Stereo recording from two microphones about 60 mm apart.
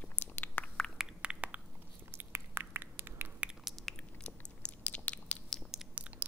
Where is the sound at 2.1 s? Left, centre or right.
Right.